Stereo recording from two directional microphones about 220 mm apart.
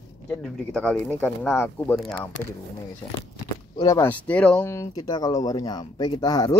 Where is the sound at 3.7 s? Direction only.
15° left (ahead or behind).